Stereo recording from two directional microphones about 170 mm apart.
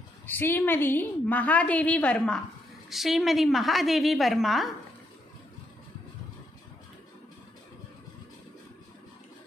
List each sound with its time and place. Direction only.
0.3 s a woman's voice: 10° left (ahead or behind)